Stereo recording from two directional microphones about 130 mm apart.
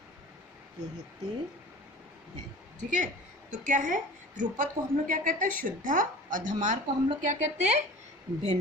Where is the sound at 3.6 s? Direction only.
85° right; by 7.8 s 60° right (ahead or behind).